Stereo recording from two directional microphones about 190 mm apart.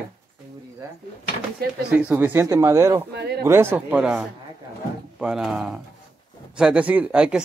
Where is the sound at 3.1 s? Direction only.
60° right (ahead or behind).